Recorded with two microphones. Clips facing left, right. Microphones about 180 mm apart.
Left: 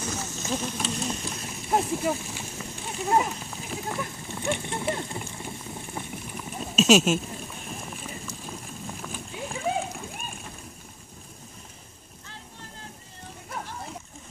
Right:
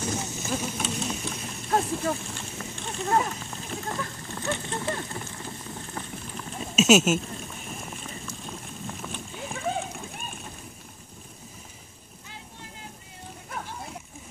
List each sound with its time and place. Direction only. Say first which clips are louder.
0.1 s vehicle: right 2 dB; 20° right (ahead or behind)
0.5 s a sound: left 1 dB; 5° right (ahead or behind); by 6.6 s 10° left (ahead or behind)
6.6 s speech: even; 5° right (ahead or behind)
7.2 s boat: even; 5° left (ahead or behind)
8.3 s horse: even; centre (ahead or behind)